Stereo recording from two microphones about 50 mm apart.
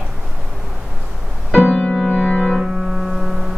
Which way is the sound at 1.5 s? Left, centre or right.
Centre.